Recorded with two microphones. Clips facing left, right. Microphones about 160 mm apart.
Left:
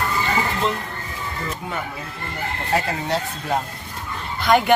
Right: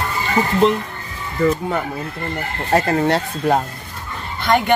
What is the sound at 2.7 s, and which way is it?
Speech, 55° right (ahead or behind).